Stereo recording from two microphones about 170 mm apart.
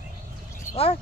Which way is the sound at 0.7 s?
35° left (ahead or behind).